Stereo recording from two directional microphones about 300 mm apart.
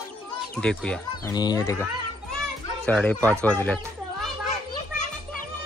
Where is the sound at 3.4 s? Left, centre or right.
Centre.